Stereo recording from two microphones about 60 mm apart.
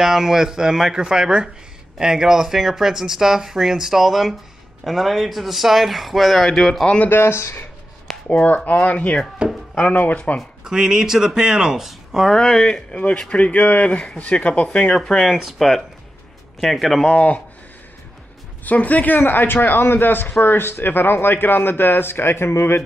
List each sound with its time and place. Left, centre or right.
0.0 s speech: centre
7.1 s speech: left
8.3 s speech: left
10.6 s speech: centre
12.3 s speech: centre
12.7 s speech: left
15.0 s speech: centre
17.0 s speech: left
18.6 s a man's voice: left